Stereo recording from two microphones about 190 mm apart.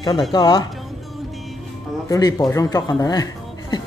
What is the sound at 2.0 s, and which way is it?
A man's voice, 20° left (ahead or behind).